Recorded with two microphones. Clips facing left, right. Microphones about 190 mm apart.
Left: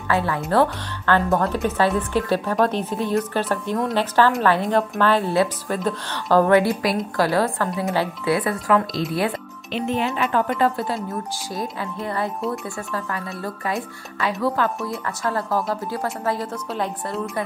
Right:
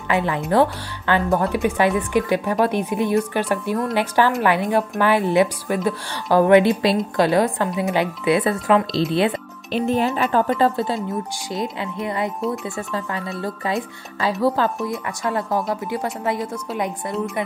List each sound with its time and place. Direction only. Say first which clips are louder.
0.1 s a woman's voice: right 1 dB; 20° right (ahead or behind)
9.7 s a woman's voice: right 3 dB; 40° right (ahead or behind); by 13.2 s 20° right (ahead or behind)
14.4 s speech: right 3 dB; 30° right (ahead or behind)
14.9 s a woman's voice: right 1 dB; 20° right (ahead or behind)